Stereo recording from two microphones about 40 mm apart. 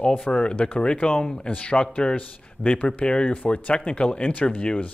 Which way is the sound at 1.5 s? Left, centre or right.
Left.